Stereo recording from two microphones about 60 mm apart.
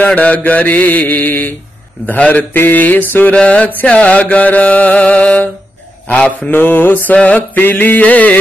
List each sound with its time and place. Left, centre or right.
0.0 s mantra: left
3.3 s mantra: left
6.5 s mantra: left